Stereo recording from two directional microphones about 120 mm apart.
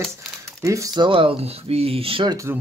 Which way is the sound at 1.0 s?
45° right (ahead or behind).